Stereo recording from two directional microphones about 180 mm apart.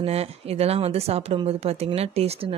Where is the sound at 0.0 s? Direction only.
35° right (ahead or behind).